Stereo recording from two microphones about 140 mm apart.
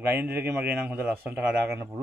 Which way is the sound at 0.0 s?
15° right (ahead or behind).